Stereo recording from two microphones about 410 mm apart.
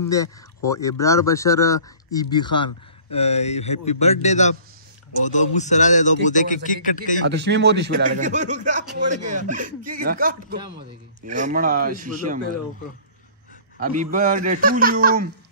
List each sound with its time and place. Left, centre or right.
0.7 s a man's voice: centre
7.2 s speech: right
14.1 s speech: centre